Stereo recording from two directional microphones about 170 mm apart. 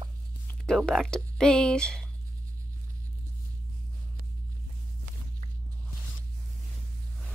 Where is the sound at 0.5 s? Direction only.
5° left (ahead or behind).